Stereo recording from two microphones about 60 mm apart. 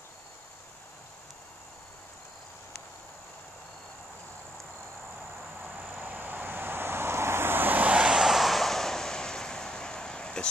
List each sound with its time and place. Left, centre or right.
5.9 s vehicle: right
8.1 s vehicle: centre